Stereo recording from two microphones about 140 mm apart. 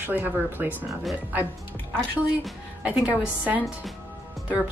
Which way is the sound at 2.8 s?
10° right (ahead or behind).